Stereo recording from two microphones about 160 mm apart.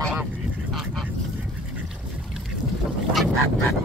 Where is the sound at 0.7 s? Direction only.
Centre (ahead or behind).